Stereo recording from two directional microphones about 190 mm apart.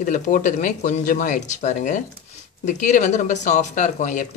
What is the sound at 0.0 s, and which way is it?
Speech, 40° left (ahead or behind).